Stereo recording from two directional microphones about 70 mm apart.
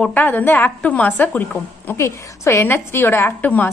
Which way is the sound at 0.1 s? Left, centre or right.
Left.